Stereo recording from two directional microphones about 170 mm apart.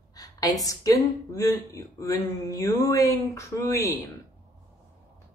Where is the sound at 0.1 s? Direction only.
20° left (ahead or behind).